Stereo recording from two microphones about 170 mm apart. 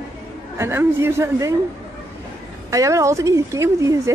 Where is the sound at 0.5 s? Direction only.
15° right (ahead or behind).